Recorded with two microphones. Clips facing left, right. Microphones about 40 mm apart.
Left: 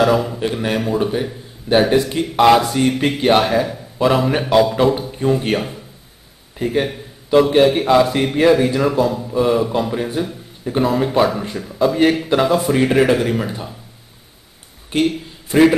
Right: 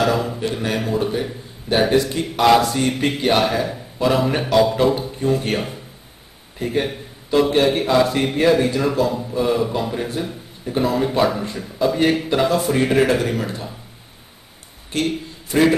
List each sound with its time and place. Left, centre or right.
0.0 s a man's voice: centre
0.4 s a man's voice: centre
14.9 s speech: centre